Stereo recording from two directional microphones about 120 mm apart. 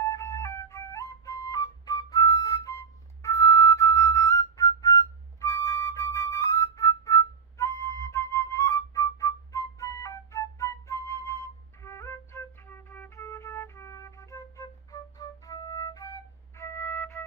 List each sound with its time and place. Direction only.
0.0 s flute: 25° left (ahead or behind)